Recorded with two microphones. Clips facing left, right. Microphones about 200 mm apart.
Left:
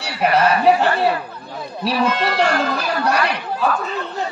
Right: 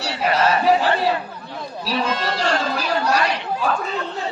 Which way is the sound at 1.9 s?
60° left (ahead or behind).